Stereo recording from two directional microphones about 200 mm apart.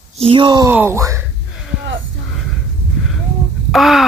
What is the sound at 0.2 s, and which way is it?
Speech, 25° right (ahead or behind).